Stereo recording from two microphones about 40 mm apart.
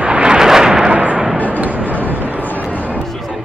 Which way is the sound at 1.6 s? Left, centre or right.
Right.